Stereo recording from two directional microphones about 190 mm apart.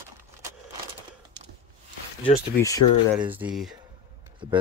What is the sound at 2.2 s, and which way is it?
Speech, 15° left (ahead or behind).